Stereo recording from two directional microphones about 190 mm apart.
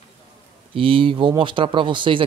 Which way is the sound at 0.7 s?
30° right (ahead or behind).